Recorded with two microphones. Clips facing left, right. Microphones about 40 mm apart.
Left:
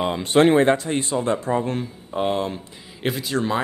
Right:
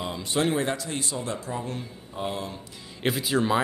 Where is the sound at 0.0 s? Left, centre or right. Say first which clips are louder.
Left 10 dB; left.